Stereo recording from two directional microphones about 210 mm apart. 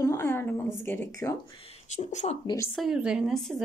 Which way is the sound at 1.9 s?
35° left (ahead or behind).